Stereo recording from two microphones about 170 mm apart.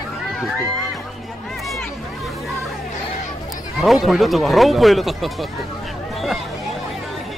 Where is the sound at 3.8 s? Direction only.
Centre (ahead or behind).